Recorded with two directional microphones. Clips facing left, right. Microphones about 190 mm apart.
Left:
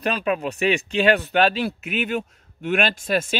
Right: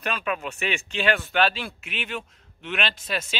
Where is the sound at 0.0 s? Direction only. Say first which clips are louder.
Left 6 dB; 35° left (ahead or behind).